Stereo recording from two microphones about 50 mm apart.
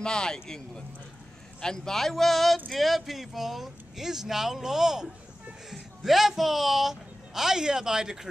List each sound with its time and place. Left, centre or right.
0.0 s a man's voice: centre